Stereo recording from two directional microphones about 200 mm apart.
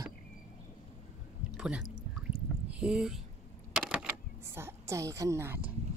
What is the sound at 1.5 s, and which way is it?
Speech, 5° right (ahead or behind).